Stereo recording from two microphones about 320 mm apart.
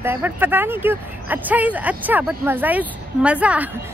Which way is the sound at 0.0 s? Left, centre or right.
Centre.